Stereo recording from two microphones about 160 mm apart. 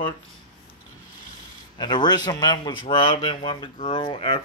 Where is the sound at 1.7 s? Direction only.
30° left (ahead or behind).